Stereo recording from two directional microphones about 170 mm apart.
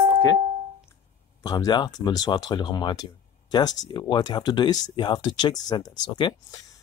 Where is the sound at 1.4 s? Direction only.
25° left (ahead or behind).